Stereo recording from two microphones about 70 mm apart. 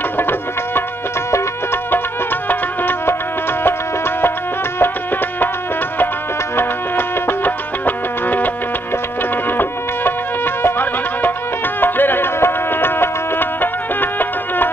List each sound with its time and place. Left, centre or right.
0.2 s music: left
2.8 s music: left
6.5 s music: left
9.6 s music: left